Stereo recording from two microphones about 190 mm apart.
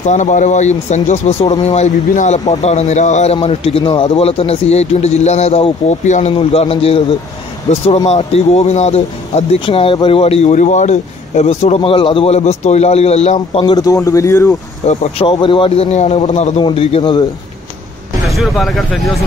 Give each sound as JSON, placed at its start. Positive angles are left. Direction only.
{"t": 0.0, "sound": "speech", "side_deg": 40}
{"t": 14.9, "sound": "a man's voice", "side_deg": 30}
{"t": 18.3, "sound": "speech", "side_deg": 0}